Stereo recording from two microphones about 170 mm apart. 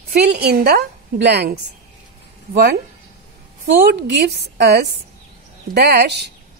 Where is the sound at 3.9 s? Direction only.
80° right.